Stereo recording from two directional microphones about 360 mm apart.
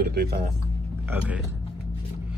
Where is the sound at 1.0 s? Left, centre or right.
Centre.